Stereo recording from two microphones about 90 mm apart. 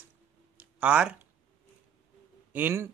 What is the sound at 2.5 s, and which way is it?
Speech, 20° right (ahead or behind).